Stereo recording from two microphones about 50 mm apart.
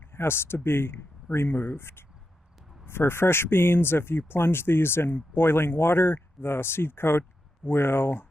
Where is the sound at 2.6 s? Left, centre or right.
Centre.